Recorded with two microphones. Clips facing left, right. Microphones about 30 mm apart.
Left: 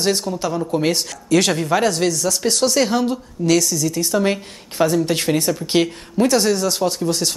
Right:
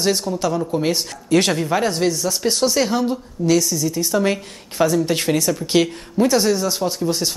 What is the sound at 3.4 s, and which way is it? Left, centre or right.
Speech, left.